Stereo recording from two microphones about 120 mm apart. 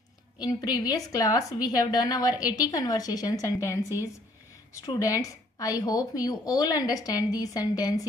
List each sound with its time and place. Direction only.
0.4 s a woman's voice: 35° left (ahead or behind)